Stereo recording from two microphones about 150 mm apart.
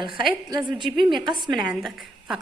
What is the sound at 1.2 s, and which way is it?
Speech, 30° right (ahead or behind).